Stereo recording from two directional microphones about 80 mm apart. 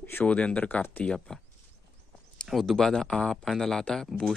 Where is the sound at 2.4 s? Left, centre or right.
Centre.